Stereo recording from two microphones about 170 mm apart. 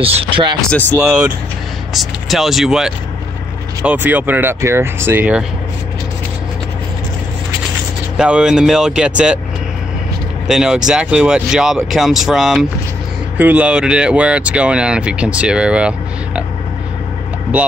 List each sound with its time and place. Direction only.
0.0 s speech: 30° right (ahead or behind)
0.7 s speech: 10° left (ahead or behind)
2.0 s speech: centre (ahead or behind)
8.2 s speech: 5° right (ahead or behind)
10.4 s speech: 5° right (ahead or behind)